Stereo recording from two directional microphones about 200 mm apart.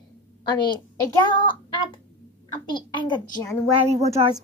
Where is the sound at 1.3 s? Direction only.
25° left (ahead or behind).